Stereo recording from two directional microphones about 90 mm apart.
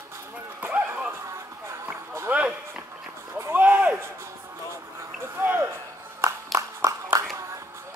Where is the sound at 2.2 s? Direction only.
15° right (ahead or behind).